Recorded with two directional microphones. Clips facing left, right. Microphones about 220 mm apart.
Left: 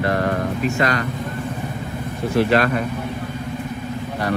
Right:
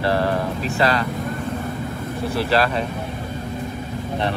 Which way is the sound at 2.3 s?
35° right (ahead or behind).